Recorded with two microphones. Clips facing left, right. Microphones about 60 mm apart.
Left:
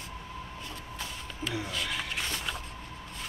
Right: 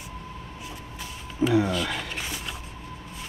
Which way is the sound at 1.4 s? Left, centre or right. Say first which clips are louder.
Right 13 dB; right.